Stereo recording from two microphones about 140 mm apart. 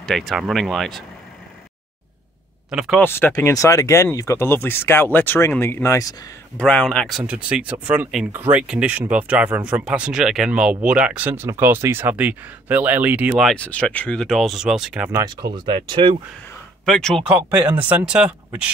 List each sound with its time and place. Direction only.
0.0 s speech: centre (ahead or behind)
2.7 s speech: 5° right (ahead or behind)
3.0 s speech: 15° left (ahead or behind)
6.6 s speech: 5° left (ahead or behind); by 13.4 s 10° right (ahead or behind)
13.4 s speech: 5° left (ahead or behind)
15.1 s speech: 30° right (ahead or behind)
16.8 s speech: 5° left (ahead or behind)
17.5 s speech: 10° right (ahead or behind)